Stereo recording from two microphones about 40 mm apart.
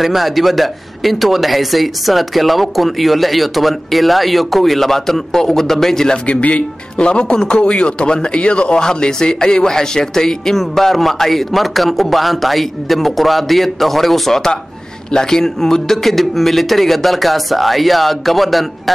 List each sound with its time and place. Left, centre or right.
0.0 s speech: centre
6.2 s a man's voice: left; by 18.7 s centre